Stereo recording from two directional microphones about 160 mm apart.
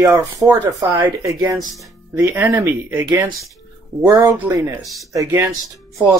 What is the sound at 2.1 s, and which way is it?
Speech, 15° right (ahead or behind).